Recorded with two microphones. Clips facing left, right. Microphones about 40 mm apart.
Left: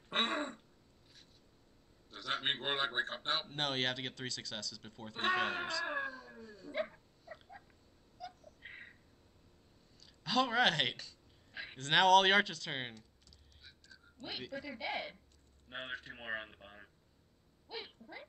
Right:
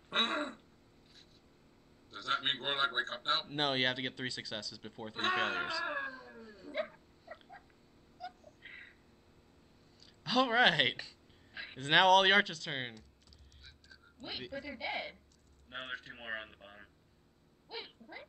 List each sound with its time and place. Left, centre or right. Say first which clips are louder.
0.1 s throat clearing: right 1 dB; centre
2.0 s a man's voice: right 2 dB; centre
3.5 s speech: right 3 dB; centre
5.2 s wail: right 1 dB; centre
8.2 s a sound: right 2 dB; centre
10.2 s speech: right 3 dB; centre
11.5 s a sound: right 1 dB; centre
11.8 s speech: right 1 dB; centre
14.2 s speech: right 1 dB; centre
17.6 s dog: even; centre